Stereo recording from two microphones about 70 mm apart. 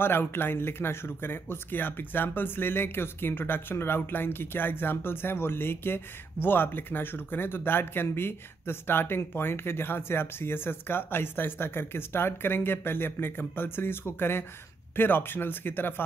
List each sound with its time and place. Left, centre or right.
0.0 s speech: left